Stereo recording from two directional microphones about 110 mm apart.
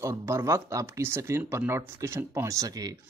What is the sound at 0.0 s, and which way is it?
Speech, 25° right (ahead or behind).